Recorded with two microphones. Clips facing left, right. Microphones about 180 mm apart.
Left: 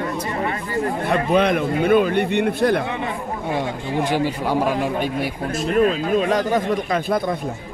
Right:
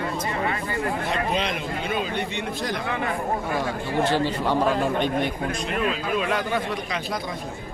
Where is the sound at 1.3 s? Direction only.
55° left (ahead or behind).